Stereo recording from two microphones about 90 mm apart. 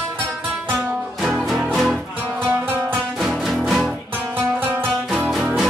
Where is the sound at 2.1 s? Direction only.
20° right (ahead or behind).